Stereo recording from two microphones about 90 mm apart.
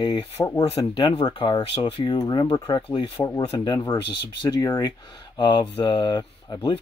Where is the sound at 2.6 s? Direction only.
65° left (ahead or behind).